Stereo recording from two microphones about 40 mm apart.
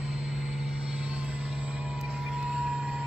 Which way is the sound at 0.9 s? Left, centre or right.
Right.